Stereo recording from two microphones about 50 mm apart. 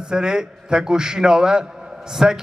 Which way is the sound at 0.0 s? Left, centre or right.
Centre.